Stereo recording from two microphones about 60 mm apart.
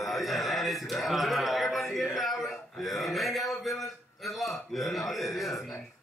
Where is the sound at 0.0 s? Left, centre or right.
Centre.